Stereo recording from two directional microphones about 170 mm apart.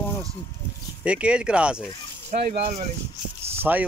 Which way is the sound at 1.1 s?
5° right (ahead or behind).